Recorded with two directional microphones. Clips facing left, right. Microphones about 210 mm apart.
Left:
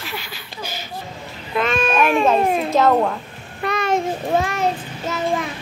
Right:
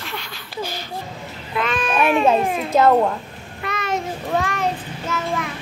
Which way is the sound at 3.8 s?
30° left (ahead or behind).